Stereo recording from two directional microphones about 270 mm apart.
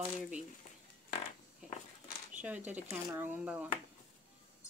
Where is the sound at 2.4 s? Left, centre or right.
Centre.